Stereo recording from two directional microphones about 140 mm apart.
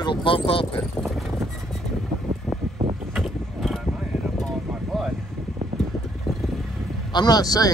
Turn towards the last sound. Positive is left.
turn(degrees=25)  # may be behind; listen again after turning